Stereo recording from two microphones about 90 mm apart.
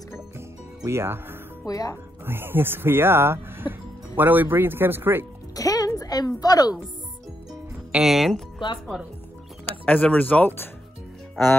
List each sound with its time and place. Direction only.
0.8 s speech: 30° right (ahead or behind)
1.7 s speech: 45° left (ahead or behind)
2.2 s speech: 25° right (ahead or behind)
5.6 s a sound: 40° left (ahead or behind)
7.9 s speech: 5° right (ahead or behind)
9.7 s speech: 15° left (ahead or behind)